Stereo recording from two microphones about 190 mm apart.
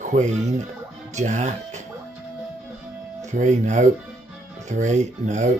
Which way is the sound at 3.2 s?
40° right (ahead or behind).